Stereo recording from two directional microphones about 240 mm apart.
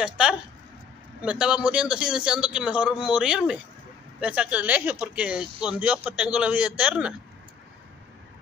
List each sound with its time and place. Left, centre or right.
0.0 s speech: centre